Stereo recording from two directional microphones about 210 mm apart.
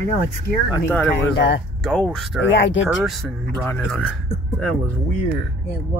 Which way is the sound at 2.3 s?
65° left (ahead or behind).